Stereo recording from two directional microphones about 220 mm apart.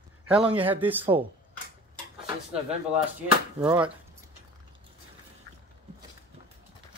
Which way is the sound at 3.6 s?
5° right (ahead or behind).